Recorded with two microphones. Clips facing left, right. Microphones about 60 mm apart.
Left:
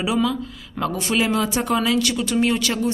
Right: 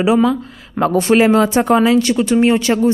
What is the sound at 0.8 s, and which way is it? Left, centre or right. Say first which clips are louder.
Speech: right 9 dB; right.